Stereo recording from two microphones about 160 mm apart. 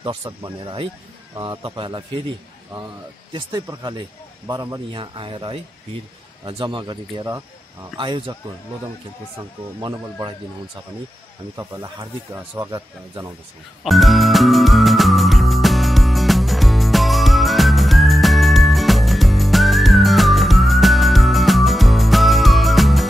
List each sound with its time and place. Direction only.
0.2 s speech: 25° right (ahead or behind)
4.5 s speech: 20° right (ahead or behind)
11.5 s speech: 20° right (ahead or behind)
13.8 s music: centre (ahead or behind)